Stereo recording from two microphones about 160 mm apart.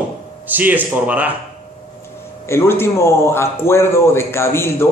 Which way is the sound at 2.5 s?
15° left (ahead or behind).